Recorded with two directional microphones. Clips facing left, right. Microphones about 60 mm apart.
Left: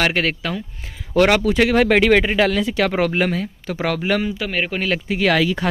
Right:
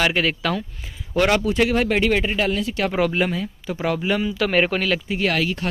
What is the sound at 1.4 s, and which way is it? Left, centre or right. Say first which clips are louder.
Speech: left 4 dB; left.